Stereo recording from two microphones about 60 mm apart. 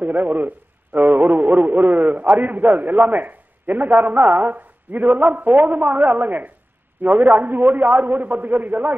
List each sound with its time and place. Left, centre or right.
0.0 s a man's voice: right